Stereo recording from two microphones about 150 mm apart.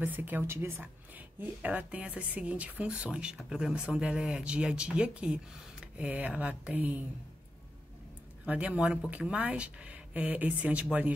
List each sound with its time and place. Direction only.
0.0 s speech: 10° right (ahead or behind)
8.5 s speech: 10° right (ahead or behind)